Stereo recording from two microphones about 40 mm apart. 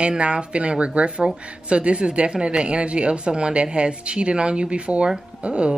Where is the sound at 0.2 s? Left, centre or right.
Right.